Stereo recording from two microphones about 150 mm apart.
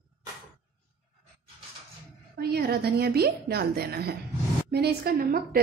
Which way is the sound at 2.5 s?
90° right.